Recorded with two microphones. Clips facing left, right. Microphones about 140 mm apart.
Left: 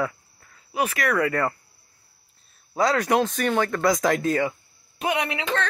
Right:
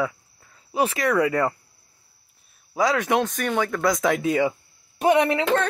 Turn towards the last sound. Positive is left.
turn(degrees=-45)  # may be behind; listen again after turning